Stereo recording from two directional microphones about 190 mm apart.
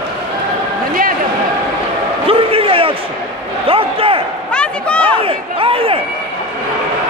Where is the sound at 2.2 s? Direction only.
30° right (ahead or behind).